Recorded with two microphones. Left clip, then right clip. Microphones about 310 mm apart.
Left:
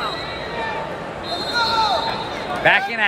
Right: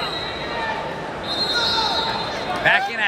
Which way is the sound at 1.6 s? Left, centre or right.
Centre.